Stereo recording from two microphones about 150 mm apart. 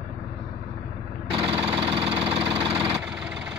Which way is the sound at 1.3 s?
35° right (ahead or behind).